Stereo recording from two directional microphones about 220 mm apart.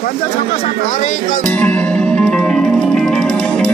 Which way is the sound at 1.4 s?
5° left (ahead or behind).